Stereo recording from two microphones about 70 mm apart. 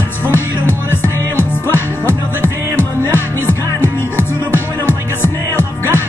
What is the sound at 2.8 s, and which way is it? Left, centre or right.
Music, left.